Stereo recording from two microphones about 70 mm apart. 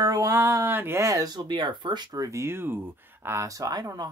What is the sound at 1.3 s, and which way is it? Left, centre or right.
Speech, right.